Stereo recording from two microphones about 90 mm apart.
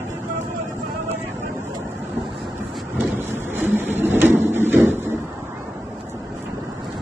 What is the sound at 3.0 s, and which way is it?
Printer, 25° right (ahead or behind).